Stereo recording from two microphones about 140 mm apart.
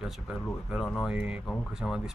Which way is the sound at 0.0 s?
5° right (ahead or behind).